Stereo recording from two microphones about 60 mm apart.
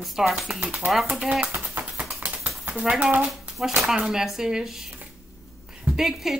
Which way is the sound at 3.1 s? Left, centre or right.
Right.